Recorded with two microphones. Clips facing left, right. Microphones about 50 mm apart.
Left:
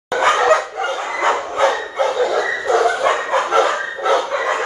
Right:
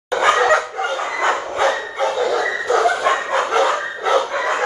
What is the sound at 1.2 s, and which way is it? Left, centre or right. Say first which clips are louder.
Bow-wow: left 2 dB; left.